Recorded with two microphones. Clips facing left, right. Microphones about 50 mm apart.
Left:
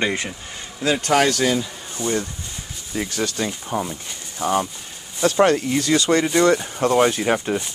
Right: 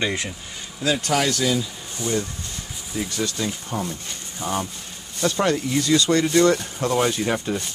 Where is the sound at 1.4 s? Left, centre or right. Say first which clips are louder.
Left 2 dB; left.